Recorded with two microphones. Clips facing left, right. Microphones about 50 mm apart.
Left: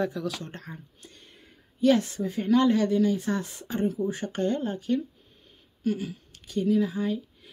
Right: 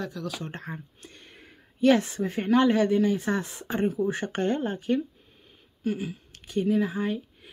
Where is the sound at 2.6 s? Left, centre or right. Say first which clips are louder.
Right 1 dB; right.